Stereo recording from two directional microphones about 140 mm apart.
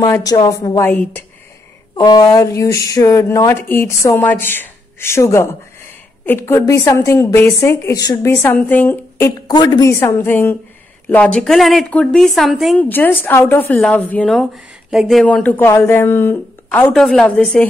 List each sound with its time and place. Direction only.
0.0 s speech: 25° left (ahead or behind)
2.0 s speech: 30° left (ahead or behind); by 9.3 s 15° left (ahead or behind)
9.5 s speech: 30° left (ahead or behind)
9.8 s speech: 20° left (ahead or behind); by 12.7 s centre (ahead or behind)
12.7 s speech: 15° left (ahead or behind)
16.9 s speech: 5° left (ahead or behind)